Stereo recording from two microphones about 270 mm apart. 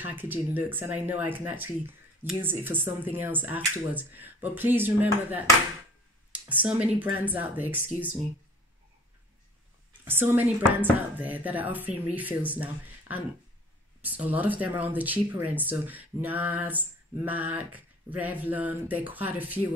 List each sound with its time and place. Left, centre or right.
0.0 s speech: centre
10.0 s speech: centre
14.0 s speech: centre